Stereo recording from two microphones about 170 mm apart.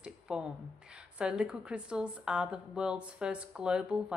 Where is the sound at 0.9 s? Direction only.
5° right (ahead or behind).